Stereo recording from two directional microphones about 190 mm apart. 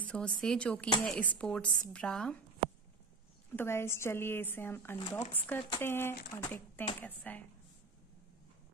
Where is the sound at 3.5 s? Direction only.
10° left (ahead or behind).